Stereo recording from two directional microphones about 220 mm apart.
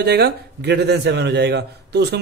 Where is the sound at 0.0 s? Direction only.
50° right (ahead or behind).